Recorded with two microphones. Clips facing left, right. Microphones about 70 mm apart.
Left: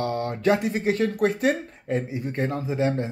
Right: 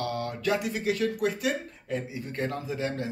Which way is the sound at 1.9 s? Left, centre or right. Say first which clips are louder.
Left 6 dB; left.